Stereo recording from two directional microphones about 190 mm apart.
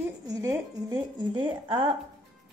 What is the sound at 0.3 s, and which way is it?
Speech, 15° right (ahead or behind).